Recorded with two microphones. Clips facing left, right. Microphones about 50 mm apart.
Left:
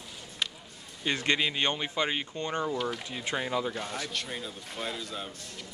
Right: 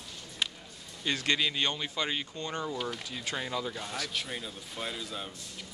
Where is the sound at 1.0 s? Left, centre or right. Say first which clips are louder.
Left 2 dB; left.